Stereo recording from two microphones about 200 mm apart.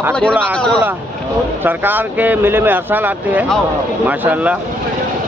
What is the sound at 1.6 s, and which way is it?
Speech, 10° right (ahead or behind).